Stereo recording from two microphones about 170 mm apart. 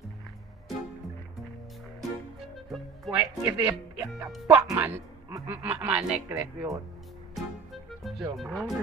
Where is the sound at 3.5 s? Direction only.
10° right (ahead or behind).